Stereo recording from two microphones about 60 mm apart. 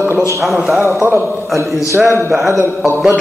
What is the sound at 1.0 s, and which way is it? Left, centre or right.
A man's voice, right.